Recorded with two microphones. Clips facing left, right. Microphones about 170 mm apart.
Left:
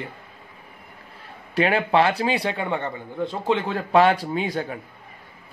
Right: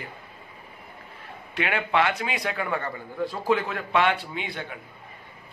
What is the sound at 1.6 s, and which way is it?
A man's voice, 35° left (ahead or behind).